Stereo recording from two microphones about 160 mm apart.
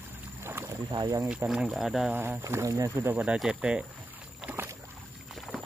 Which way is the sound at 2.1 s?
15° right (ahead or behind).